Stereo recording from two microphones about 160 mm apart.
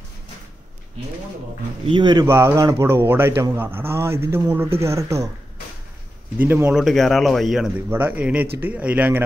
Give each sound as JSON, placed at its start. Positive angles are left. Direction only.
{"t": 1.9, "sound": "speech", "side_deg": -30}
{"t": 2.2, "sound": "a man's voice", "side_deg": -15}
{"t": 6.3, "sound": "a man's voice", "side_deg": -10}
{"t": 6.8, "sound": "a man's voice", "side_deg": 0}